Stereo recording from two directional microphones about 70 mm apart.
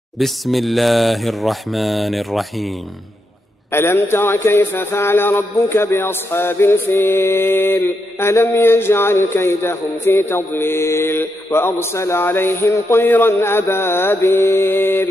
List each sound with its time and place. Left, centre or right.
0.2 s mantra: centre
3.7 s speech: left
12.7 s a sound: left
13.0 s speech: left